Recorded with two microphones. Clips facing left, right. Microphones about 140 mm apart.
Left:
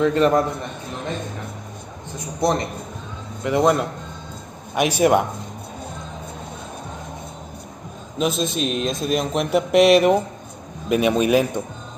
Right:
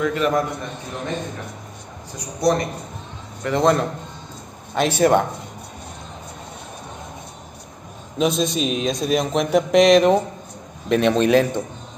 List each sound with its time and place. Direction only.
0.0 s a man's voice: 35° left (ahead or behind)
2.1 s a man's voice: 25° left (ahead or behind)
3.4 s a man's voice: 10° left (ahead or behind)
8.2 s a man's voice: centre (ahead or behind)